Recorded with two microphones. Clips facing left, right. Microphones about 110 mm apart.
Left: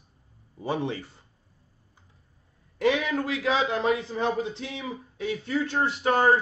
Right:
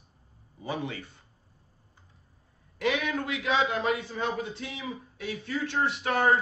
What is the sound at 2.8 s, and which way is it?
A man's voice, 30° left (ahead or behind).